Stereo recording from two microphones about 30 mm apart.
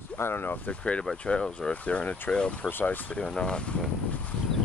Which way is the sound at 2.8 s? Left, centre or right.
Left.